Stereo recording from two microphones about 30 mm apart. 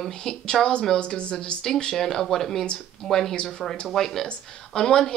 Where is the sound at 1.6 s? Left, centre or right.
Centre.